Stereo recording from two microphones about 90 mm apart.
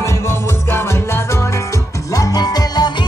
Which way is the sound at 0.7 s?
25° left (ahead or behind).